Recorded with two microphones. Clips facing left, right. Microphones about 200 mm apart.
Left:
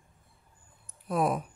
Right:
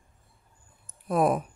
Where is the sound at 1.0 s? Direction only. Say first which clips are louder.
Right 4 dB; 50° right (ahead or behind).